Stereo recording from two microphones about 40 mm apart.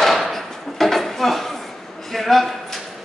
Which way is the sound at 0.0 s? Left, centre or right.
Centre.